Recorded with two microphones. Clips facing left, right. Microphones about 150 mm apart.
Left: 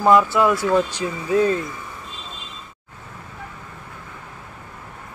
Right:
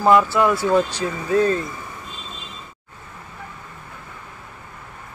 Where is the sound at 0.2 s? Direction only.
15° left (ahead or behind).